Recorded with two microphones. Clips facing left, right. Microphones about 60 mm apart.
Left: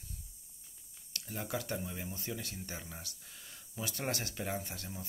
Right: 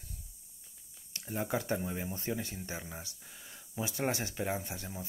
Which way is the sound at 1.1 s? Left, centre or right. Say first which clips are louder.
Right 5 dB; centre.